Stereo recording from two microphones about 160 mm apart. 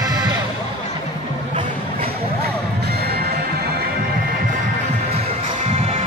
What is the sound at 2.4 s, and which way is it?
Music, 85° right.